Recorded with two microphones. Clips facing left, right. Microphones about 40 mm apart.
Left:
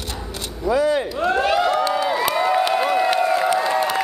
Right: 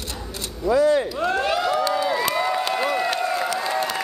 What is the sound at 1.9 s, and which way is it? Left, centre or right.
Crowd, centre.